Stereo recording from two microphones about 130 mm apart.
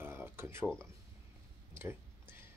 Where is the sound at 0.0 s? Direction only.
15° right (ahead or behind).